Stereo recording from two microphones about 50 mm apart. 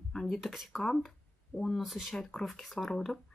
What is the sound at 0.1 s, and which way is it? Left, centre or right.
Speech, centre.